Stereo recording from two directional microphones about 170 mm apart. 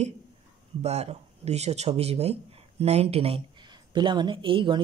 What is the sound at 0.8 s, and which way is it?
Speech, 40° right (ahead or behind).